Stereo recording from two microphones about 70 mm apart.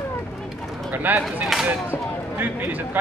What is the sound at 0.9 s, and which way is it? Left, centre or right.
Speech, right.